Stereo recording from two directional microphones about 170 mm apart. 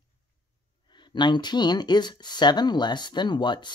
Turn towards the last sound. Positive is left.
turn(degrees=25)  # may be behind; listen again after turning